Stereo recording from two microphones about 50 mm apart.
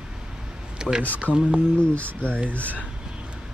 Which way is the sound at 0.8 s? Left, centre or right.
Centre.